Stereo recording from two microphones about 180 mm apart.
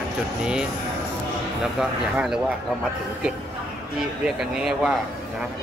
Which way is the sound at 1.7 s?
Centre (ahead or behind).